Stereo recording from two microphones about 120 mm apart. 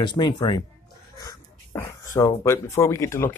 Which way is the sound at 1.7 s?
25° left (ahead or behind).